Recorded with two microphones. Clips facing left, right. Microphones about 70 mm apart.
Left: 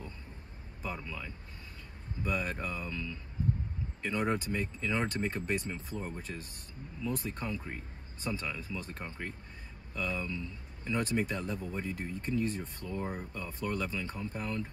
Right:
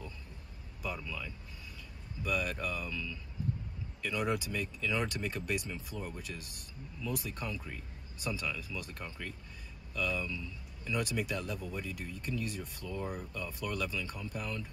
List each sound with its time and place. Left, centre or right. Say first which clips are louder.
0.8 s speech: even; left
8.9 s speech: left 2 dB; left